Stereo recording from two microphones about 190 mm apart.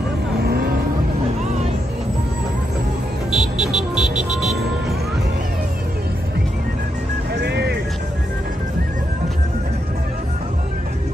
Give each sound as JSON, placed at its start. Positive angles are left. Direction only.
{"t": 0.4, "sound": "vehicle", "side_deg": -55}
{"t": 3.3, "sound": "music", "side_deg": 0}
{"t": 7.3, "sound": "music", "side_deg": -60}